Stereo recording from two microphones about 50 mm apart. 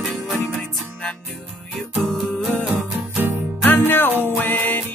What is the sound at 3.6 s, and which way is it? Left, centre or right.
Music, left.